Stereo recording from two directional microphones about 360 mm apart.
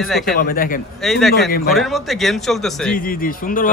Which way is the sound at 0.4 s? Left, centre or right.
Left.